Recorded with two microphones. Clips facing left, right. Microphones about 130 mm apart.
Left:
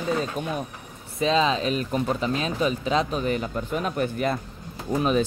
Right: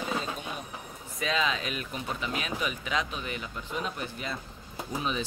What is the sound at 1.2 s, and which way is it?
Speech, 30° left (ahead or behind).